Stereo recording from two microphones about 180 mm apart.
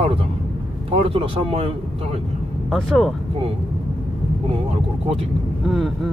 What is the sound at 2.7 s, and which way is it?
Speech, centre (ahead or behind).